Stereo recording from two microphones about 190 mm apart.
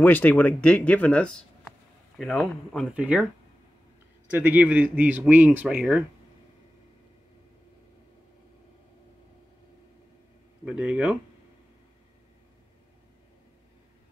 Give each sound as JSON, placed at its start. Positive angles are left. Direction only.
{"t": 0.0, "sound": "speech", "side_deg": 10}
{"t": 4.3, "sound": "a man's voice", "side_deg": -10}
{"t": 10.6, "sound": "a man's voice", "side_deg": -5}